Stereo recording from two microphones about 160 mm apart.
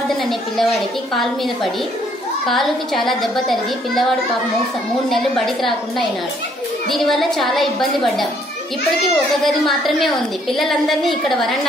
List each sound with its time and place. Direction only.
1.1 s a woman's voice: centre (ahead or behind)
5.1 s a woman's voice: centre (ahead or behind)